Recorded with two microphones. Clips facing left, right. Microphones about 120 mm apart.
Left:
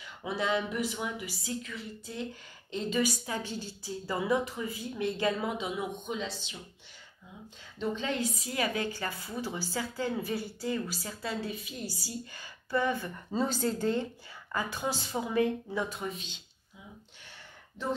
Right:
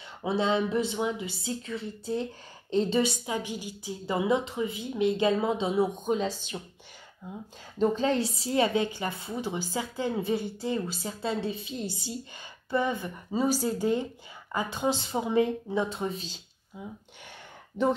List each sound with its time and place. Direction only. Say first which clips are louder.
0.2 s a woman's voice: right 5 dB; 25° right (ahead or behind); by 6.6 s 45° right (ahead or behind)
7.8 s a woman's voice: right 7 dB; 35° right (ahead or behind)